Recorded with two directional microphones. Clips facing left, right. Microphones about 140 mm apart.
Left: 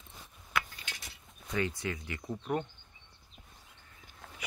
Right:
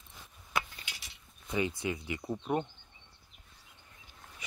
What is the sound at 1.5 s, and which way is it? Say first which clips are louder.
Speech: right 1 dB; 15° right (ahead or behind).